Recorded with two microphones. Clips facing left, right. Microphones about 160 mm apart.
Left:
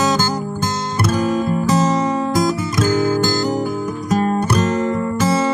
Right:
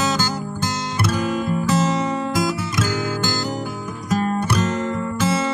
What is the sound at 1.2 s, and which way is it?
Music, 40° left (ahead or behind).